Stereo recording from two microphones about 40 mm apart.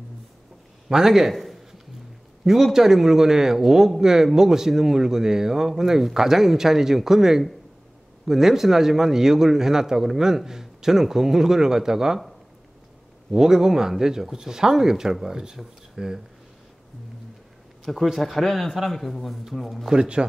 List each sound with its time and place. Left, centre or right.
0.8 s a man's voice: centre
1.3 s a sound: centre
2.4 s a man's voice: centre
13.3 s a man's voice: centre
17.8 s a man's voice: centre
19.9 s a man's voice: right